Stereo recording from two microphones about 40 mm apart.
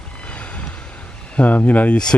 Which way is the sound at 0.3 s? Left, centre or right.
Left.